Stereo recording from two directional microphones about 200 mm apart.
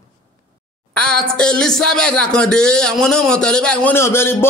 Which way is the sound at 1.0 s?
5° left (ahead or behind).